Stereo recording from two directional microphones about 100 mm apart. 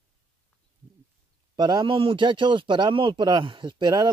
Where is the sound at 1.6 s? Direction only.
50° right (ahead or behind).